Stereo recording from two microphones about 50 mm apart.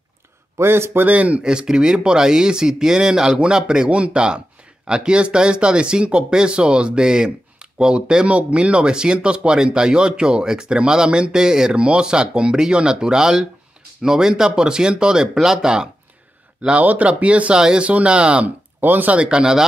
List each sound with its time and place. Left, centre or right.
0.6 s a man's voice: right
1.0 s speech: right
1.4 s speech: centre
16.6 s speech: right
18.8 s speech: right
19.1 s speech: centre